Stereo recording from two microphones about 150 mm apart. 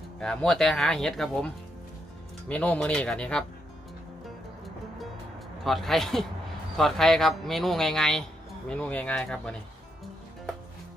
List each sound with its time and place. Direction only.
0.2 s speech: 5° left (ahead or behind)
5.6 s speech: centre (ahead or behind)